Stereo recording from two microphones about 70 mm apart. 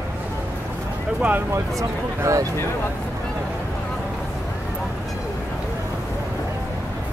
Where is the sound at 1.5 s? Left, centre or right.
Right.